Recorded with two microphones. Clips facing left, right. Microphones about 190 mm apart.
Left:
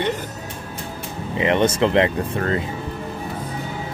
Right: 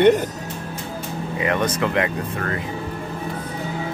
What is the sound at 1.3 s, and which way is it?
Speech, 25° left (ahead or behind).